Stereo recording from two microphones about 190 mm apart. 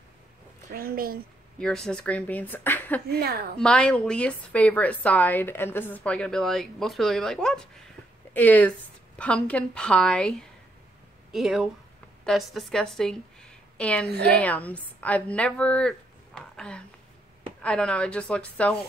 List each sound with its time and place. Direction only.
0.7 s speech: 50° right (ahead or behind)
1.6 s a woman's voice: 5° left (ahead or behind)
3.1 s a woman's voice: 55° right (ahead or behind)
3.5 s a woman's voice: 5° left (ahead or behind)
11.3 s a woman's voice: centre (ahead or behind)